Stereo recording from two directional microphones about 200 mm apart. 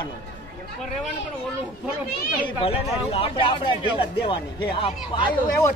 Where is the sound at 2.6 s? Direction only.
30° left (ahead or behind).